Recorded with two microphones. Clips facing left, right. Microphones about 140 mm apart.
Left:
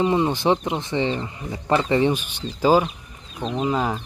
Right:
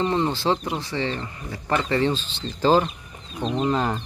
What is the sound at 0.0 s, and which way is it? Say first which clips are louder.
Speech: left 3 dB; 15° left (ahead or behind).